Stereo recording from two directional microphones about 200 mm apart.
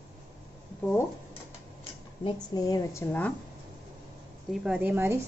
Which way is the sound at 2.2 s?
20° left (ahead or behind).